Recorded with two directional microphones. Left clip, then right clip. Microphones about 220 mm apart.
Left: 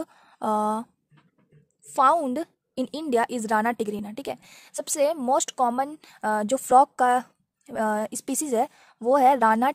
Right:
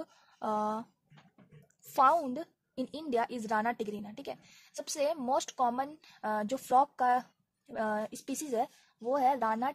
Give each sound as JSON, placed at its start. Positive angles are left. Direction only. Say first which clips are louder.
{"t": 0.0, "sound": "speech", "louder": "left 8 dB", "side_deg": 30}
{"t": 2.0, "sound": "a woman's voice", "louder": "left 6 dB", "side_deg": 25}